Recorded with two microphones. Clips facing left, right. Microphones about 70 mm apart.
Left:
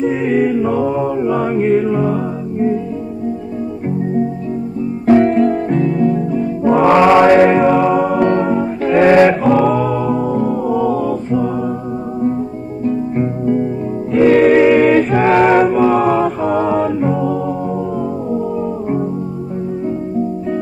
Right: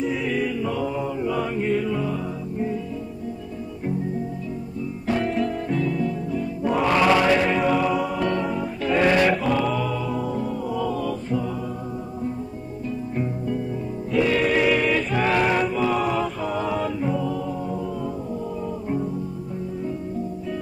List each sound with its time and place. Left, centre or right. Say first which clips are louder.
0.0 s mantra: left 10 dB; left
5.0 s music: left 13 dB; left
12.8 s music: left 11 dB; left